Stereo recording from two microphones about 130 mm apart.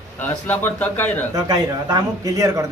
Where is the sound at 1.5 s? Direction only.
30° right (ahead or behind).